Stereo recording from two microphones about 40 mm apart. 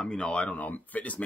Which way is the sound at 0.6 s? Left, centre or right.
Left.